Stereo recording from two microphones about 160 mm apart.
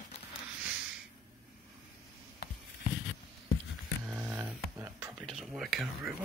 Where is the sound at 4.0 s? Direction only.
10° right (ahead or behind).